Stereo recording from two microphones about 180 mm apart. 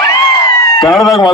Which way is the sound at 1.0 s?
Centre (ahead or behind).